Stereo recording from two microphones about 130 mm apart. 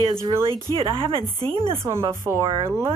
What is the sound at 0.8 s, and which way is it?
Speech, 45° right (ahead or behind).